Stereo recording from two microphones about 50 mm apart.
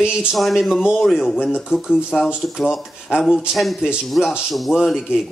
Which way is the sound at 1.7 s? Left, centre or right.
Centre.